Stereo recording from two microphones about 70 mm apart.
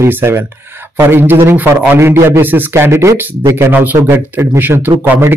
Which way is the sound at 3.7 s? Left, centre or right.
Right.